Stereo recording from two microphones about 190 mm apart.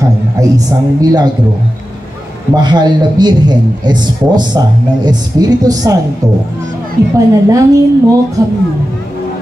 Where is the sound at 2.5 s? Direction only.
20° right (ahead or behind).